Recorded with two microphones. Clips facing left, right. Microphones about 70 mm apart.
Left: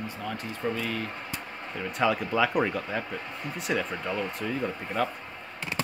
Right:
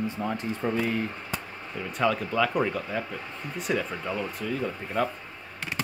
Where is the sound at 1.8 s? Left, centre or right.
Centre.